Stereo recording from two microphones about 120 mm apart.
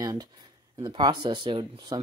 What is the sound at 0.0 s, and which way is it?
Speech, 30° right (ahead or behind).